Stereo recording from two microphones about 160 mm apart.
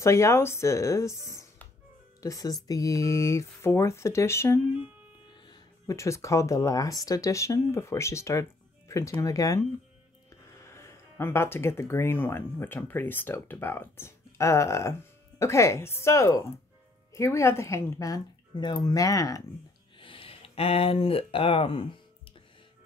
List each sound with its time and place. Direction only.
0.0 s speech: 20° left (ahead or behind)
1.3 s music: 20° left (ahead or behind)
2.2 s speech: 20° left (ahead or behind)
20.0 s speech: 35° left (ahead or behind)